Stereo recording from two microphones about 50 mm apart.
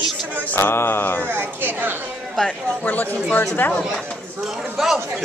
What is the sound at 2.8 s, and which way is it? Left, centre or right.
Speech, left.